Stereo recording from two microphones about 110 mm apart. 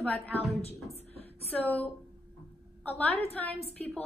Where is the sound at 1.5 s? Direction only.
15° left (ahead or behind).